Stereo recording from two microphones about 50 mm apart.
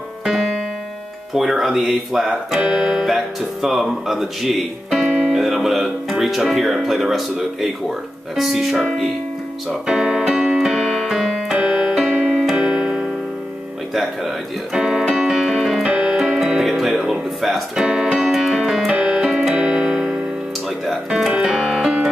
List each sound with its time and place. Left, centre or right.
1.3 s speech: centre
9.8 s music: centre
10.6 s keyboard: centre
12.1 s keyboard: right
12.4 s keyboard: centre
15.9 s music: centre
17.7 s speech: centre
18.3 s music: centre
18.9 s keyboard: centre
21.4 s music: centre